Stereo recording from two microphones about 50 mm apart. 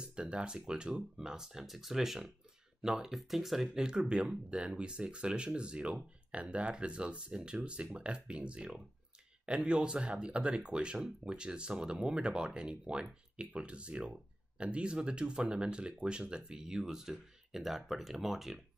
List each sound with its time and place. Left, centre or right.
0.0 s speech: centre